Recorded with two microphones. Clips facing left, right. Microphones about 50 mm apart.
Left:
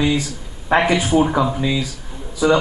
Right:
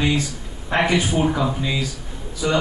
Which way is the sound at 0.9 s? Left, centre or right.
Centre.